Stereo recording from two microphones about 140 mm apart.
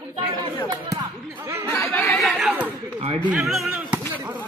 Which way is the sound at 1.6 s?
20° left (ahead or behind).